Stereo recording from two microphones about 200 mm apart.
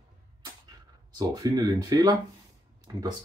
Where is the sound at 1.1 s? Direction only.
20° right (ahead or behind).